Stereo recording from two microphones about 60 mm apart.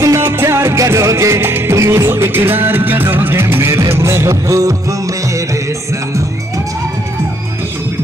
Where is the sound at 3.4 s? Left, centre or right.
Right.